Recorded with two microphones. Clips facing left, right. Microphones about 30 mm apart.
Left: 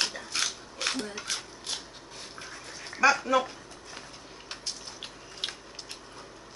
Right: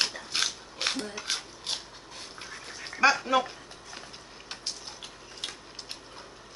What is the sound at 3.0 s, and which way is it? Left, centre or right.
Speech, right.